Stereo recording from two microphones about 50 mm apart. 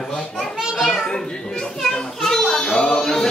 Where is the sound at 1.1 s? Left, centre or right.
Centre.